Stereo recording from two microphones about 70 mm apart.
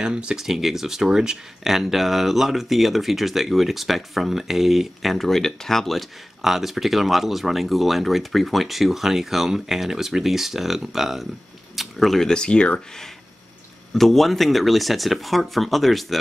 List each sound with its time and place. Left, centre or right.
0.0 s speech: centre
13.9 s speech: centre